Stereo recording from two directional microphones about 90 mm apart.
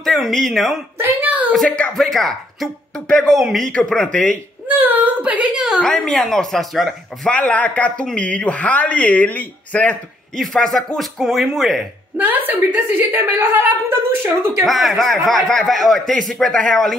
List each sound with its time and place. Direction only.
0.0 s a man's voice: centre (ahead or behind)
0.9 s a sound: 20° right (ahead or behind)
2.0 s a man's voice: centre (ahead or behind)
4.6 s a child's voice: 20° right (ahead or behind)
5.8 s speech: 10° left (ahead or behind)
10.3 s a man's voice: 5° left (ahead or behind)
12.2 s a woman's voice: 20° right (ahead or behind)
14.6 s a man's voice: centre (ahead or behind)